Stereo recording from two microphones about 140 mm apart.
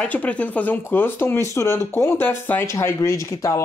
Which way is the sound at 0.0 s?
10° left (ahead or behind).